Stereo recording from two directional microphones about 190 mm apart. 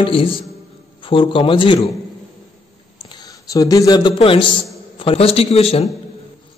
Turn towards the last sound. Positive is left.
turn(degrees=30)  # may be behind; listen again after turning